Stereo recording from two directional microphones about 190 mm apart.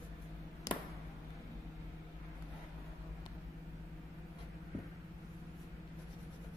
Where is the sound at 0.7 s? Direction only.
15° left (ahead or behind).